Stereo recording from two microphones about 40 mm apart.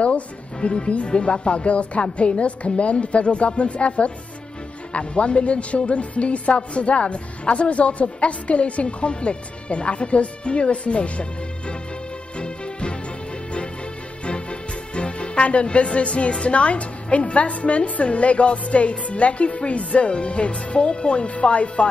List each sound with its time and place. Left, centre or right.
0.0 s a woman's voice: left
14.2 s speech: left